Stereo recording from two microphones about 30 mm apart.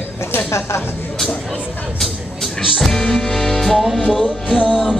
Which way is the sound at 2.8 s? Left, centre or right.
Centre.